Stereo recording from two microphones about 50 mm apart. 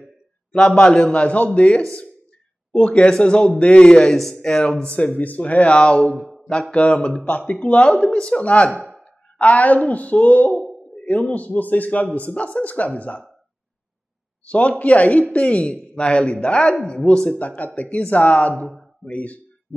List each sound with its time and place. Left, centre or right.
0.7 s a man's voice: centre
14.4 s a man's voice: left
17.4 s a man's voice: left